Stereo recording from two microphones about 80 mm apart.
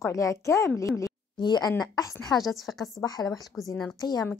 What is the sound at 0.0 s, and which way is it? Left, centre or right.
A woman's voice, left.